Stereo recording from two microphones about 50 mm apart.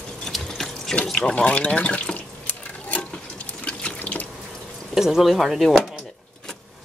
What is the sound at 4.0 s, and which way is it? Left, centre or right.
Water tap, left.